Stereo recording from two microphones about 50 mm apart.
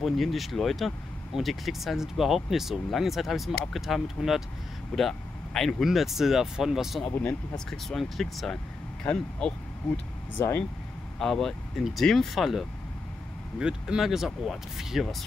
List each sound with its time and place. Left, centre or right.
0.0 s speech: centre
4.9 s speech: centre
5.9 s speech: centre
7.7 s speech: centre
9.0 s speech: left
11.1 s speech: centre
13.6 s speech: centre